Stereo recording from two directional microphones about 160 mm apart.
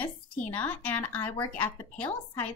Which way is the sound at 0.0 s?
10° left (ahead or behind).